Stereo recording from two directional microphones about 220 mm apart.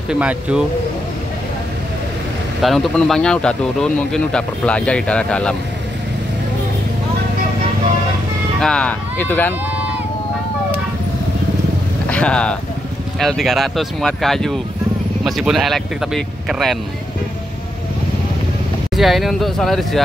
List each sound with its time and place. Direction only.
0.1 s speech: 5° right (ahead or behind)
2.6 s speech: centre (ahead or behind)
8.5 s speech: 5° left (ahead or behind)
12.1 s a sound: 5° left (ahead or behind)
13.2 s speech: centre (ahead or behind)
18.9 s speech: centre (ahead or behind)